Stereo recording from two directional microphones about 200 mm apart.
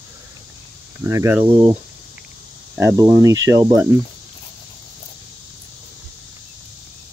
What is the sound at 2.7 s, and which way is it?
Speech, 15° right (ahead or behind).